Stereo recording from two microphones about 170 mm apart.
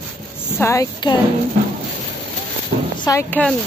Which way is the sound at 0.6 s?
15° left (ahead or behind).